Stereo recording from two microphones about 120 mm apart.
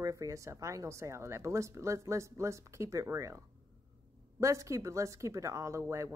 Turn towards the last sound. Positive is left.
turn(degrees=-25)  # may be behind; listen again after turning